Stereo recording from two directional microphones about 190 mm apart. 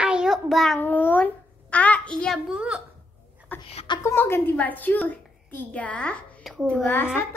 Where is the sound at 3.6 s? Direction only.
30° left (ahead or behind).